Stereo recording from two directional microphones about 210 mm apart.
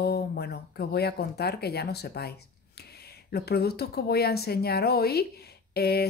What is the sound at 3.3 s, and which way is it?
Speech, 50° left (ahead or behind).